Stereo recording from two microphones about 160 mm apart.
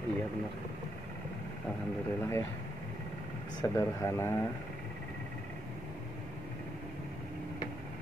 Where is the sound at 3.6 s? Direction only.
20° left (ahead or behind).